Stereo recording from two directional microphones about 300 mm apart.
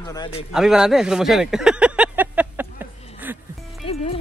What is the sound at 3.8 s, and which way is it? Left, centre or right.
Music, centre.